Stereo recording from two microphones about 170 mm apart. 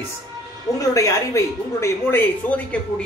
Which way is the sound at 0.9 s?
15° left (ahead or behind).